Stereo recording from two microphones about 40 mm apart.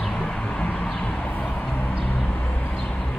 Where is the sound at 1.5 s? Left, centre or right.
Left.